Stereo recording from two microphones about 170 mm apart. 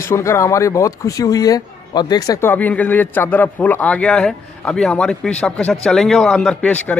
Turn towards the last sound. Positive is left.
turn(degrees=5)  # may be behind; listen again after turning